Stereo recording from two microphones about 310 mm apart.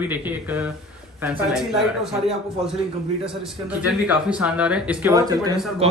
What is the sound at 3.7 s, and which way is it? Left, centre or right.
Speech, centre.